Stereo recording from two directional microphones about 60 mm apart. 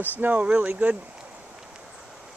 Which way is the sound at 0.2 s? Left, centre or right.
Right.